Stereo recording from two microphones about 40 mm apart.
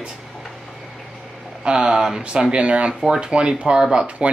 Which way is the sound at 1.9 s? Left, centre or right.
Centre.